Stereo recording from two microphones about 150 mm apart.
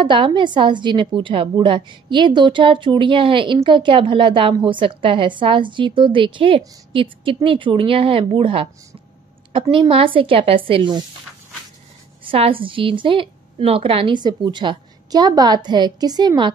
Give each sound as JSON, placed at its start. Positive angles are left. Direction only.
{"t": 0.0, "sound": "a woman's voice", "side_deg": -35}
{"t": 12.3, "sound": "a woman's voice", "side_deg": -35}